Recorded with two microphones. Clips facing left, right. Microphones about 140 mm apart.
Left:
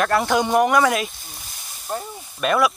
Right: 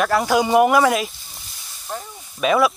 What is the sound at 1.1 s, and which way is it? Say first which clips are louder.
Snake: left 3 dB; 45° left (ahead or behind).